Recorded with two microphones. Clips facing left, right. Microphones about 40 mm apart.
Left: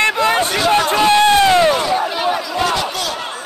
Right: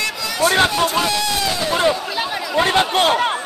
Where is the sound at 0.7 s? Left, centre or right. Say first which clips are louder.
Left 6 dB; left.